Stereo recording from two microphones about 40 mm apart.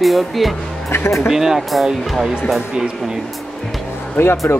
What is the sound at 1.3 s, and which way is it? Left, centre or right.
Speech, centre.